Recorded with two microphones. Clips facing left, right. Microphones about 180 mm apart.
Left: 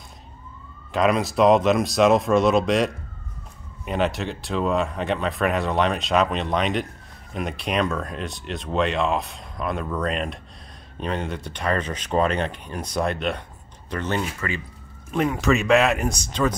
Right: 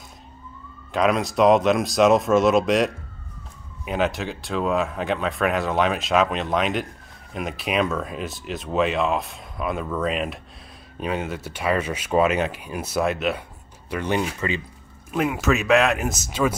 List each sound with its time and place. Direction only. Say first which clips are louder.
0.9 s speech: even; centre (ahead or behind); by 14.6 s 20° right (ahead or behind)
15.0 s speech: left 1 dB; 5° right (ahead or behind)